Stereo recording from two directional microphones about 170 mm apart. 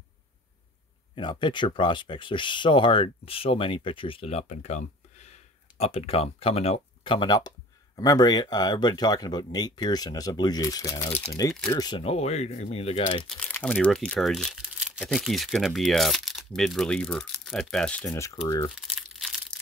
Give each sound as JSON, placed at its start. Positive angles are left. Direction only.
{"t": 1.1, "sound": "speech", "side_deg": 30}
{"t": 12.0, "sound": "speech", "side_deg": 35}
{"t": 13.3, "sound": "speech", "side_deg": 10}
{"t": 18.0, "sound": "speech", "side_deg": 15}
{"t": 18.8, "sound": "crumpling", "side_deg": 0}